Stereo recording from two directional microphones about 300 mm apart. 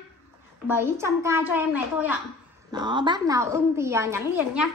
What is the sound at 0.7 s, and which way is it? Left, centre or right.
A woman's voice, centre.